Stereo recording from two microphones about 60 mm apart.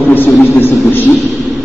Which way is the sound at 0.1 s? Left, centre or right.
Left.